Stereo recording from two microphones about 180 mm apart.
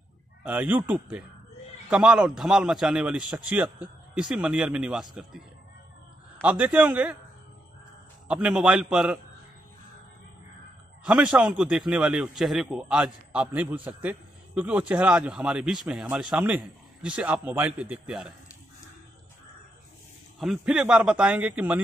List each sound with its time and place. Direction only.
0.4 s a man's voice: 10° right (ahead or behind)
6.4 s a man's voice: 10° right (ahead or behind)
8.3 s a man's voice: 5° right (ahead or behind)
11.1 s a man's voice: 5° right (ahead or behind)
20.3 s a man's voice: 5° right (ahead or behind)